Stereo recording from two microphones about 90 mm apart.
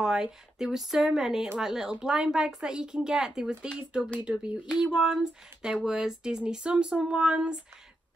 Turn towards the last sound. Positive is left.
turn(degrees=-10)  # may be behind; listen again after turning